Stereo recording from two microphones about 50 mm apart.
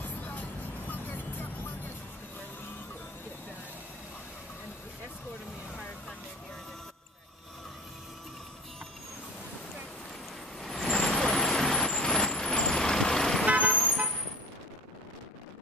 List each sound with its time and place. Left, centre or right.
0.0 s music: left
10.6 s vehicle: centre
13.5 s vehicle: right